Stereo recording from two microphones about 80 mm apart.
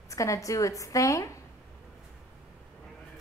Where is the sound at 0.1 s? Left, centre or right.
Left.